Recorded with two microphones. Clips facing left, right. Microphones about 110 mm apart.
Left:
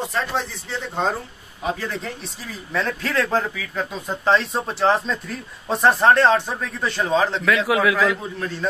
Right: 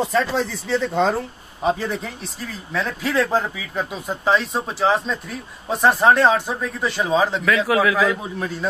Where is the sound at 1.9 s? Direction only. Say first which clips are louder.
Right 2 dB; 5° right (ahead or behind).